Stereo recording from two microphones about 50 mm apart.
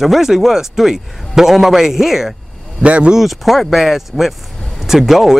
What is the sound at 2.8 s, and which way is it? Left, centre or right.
Speech, right.